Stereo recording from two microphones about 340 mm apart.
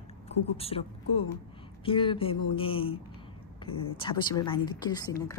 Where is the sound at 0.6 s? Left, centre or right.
Centre.